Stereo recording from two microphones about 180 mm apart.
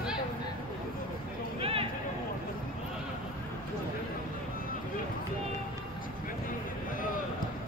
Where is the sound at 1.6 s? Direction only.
30° right (ahead or behind).